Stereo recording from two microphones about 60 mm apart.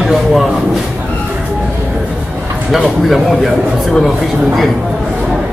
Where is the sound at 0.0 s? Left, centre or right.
Centre.